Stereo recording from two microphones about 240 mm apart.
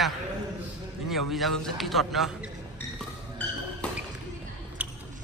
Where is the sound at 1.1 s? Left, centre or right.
Centre.